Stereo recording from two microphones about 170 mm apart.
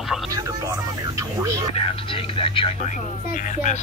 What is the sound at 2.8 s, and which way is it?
Speech, 50° left (ahead or behind).